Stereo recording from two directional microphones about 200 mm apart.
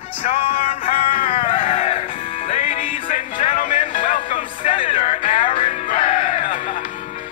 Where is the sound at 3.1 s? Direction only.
40° left (ahead or behind).